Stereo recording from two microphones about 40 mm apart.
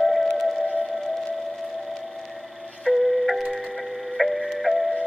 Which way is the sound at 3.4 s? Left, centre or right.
Centre.